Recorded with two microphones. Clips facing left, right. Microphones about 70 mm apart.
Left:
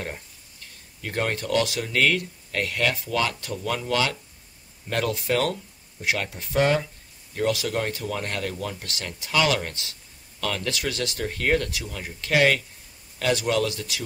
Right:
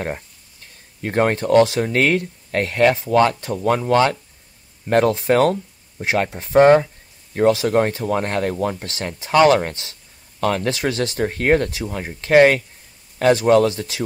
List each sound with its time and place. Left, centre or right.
1.0 s speech: right